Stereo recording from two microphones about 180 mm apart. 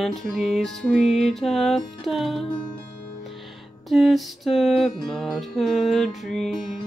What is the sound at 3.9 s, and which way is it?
Music, centre (ahead or behind).